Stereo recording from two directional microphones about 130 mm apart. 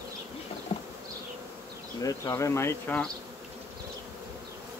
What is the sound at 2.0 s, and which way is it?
Speech, 25° left (ahead or behind).